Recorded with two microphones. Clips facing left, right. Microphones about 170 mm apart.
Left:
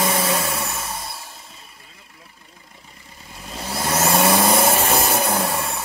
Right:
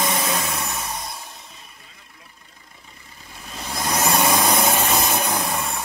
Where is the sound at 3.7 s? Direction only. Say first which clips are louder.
Left 2 dB; 5° left (ahead or behind).